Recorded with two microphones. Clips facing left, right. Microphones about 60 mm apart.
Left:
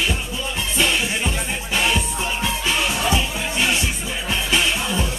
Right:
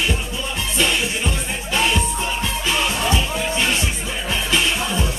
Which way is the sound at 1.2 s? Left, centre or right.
Centre.